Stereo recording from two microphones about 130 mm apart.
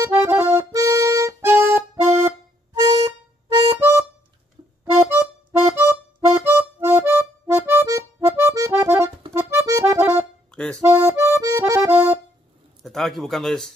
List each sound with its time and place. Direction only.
0.0 s accordion: 20° right (ahead or behind)
1.4 s music: 15° right (ahead or behind)
2.7 s harmonica: 35° right (ahead or behind)
3.7 s harmonica: 20° right (ahead or behind)
4.9 s music: 15° right (ahead or behind)
9.3 s accordion: 20° right (ahead or behind)
10.5 s accordion: 5° left (ahead or behind)
10.8 s accordion: 20° right (ahead or behind)
12.8 s speech: centre (ahead or behind)